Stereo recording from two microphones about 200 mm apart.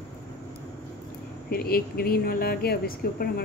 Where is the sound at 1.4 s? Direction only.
50° left (ahead or behind).